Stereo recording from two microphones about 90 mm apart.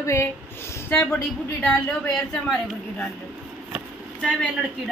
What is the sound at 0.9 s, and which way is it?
A woman's voice, 15° left (ahead or behind).